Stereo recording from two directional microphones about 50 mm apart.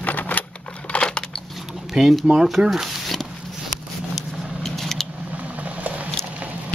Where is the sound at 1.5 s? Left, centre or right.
Centre.